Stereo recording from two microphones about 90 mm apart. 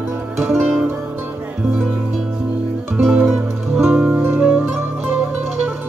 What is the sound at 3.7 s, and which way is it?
Music, 5° right (ahead or behind).